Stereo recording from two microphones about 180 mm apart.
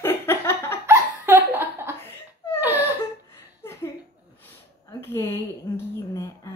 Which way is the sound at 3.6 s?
15° left (ahead or behind).